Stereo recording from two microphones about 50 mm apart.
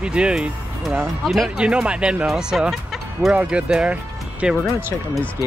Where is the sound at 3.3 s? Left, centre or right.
Right.